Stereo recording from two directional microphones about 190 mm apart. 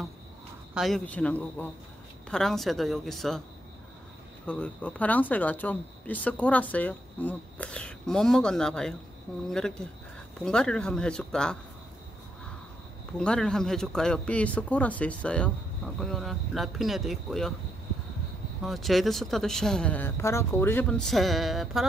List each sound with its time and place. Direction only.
0.7 s speech: centre (ahead or behind)
4.5 s speech: 5° left (ahead or behind)
13.2 s speech: 5° left (ahead or behind)
18.6 s speech: centre (ahead or behind)